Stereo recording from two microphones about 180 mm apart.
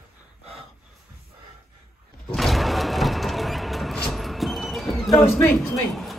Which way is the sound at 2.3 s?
Centre (ahead or behind).